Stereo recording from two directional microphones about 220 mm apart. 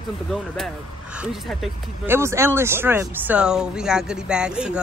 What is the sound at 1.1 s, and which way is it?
Speech, centre (ahead or behind).